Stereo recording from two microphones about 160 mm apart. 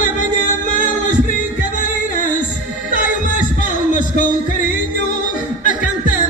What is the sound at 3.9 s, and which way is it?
Music, 50° left (ahead or behind).